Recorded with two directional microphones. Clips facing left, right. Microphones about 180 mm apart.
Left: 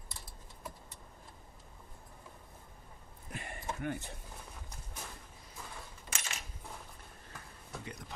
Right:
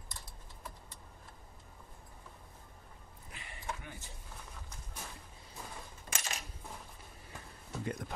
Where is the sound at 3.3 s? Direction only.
50° left (ahead or behind).